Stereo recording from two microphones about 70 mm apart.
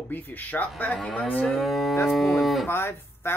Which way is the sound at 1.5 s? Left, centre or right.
Centre.